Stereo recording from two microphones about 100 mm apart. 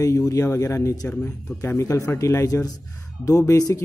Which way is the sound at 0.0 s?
35° left (ahead or behind).